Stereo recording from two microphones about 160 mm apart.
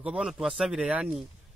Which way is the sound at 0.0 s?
5° right (ahead or behind).